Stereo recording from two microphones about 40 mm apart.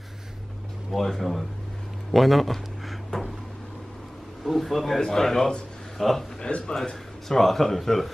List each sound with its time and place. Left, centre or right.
0.9 s a man's voice: centre
4.5 s a man's voice: centre
6.4 s speech: left
6.8 s a man's voice: centre